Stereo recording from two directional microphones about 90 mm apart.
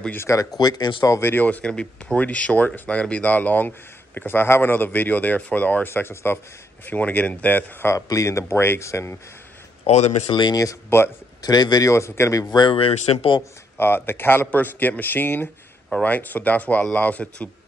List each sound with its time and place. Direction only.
0.1 s speech: 30° left (ahead or behind)
0.6 s a man's voice: 50° left (ahead or behind)
1.2 s speech: 20° left (ahead or behind)
7.9 s speech: 35° left (ahead or behind)
10.2 s speech: 55° left (ahead or behind)
10.6 s speech: 30° left (ahead or behind)
11.4 s a man's voice: 50° left (ahead or behind)
11.9 s speech: 35° left (ahead or behind)
12.5 s speech: 75° left (ahead or behind)
13.7 s speech: 25° left (ahead or behind)